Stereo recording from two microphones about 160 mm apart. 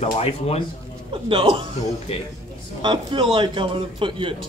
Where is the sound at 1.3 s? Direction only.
35° right (ahead or behind).